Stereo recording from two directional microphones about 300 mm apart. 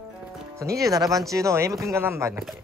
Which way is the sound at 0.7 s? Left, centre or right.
Centre.